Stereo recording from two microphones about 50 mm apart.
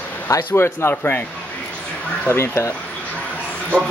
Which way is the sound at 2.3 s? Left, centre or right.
Left.